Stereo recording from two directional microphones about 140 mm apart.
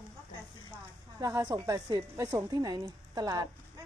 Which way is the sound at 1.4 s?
25° right (ahead or behind).